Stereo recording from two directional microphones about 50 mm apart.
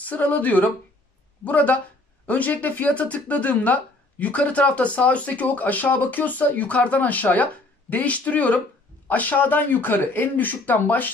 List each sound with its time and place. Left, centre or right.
0.0 s speech: left